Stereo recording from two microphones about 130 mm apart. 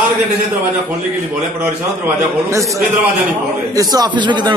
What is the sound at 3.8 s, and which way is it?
Speech, 35° right (ahead or behind).